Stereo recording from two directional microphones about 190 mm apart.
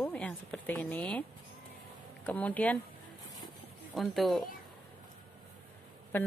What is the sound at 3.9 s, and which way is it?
Speech, centre (ahead or behind).